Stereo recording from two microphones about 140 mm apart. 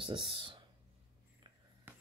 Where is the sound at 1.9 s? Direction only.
15° right (ahead or behind).